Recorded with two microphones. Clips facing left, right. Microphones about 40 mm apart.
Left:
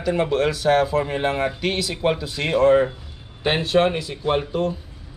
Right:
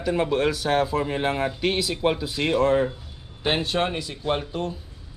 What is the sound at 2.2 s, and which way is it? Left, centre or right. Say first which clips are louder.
Speech: even; centre.